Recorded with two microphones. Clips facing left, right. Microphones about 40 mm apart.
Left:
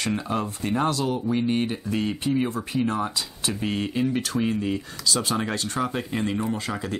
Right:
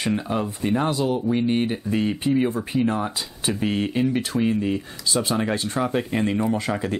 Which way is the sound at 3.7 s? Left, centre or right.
Right.